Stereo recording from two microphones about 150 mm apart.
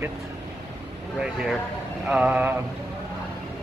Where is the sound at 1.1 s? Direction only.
5° right (ahead or behind).